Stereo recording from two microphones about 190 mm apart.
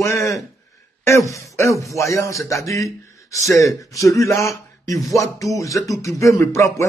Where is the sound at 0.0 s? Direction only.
15° left (ahead or behind).